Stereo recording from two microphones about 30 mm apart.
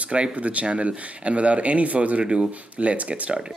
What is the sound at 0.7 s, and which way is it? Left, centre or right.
Speech, right.